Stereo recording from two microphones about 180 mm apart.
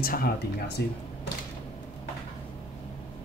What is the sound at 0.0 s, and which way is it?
Speech, 55° left (ahead or behind).